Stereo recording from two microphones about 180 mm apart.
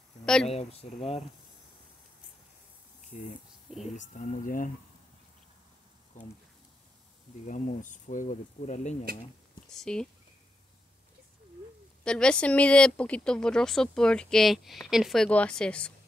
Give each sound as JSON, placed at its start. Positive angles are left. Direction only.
{"t": 0.2, "sound": "a sound", "side_deg": 5}
{"t": 0.5, "sound": "speech", "side_deg": 35}
{"t": 3.0, "sound": "a sound", "side_deg": 45}
{"t": 3.9, "sound": "speech", "side_deg": 45}
{"t": 7.4, "sound": "speech", "side_deg": 45}
{"t": 9.7, "sound": "speech", "side_deg": 5}
{"t": 12.0, "sound": "speech", "side_deg": 5}